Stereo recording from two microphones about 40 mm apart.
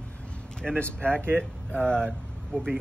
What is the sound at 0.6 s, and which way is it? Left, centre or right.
Speech, centre.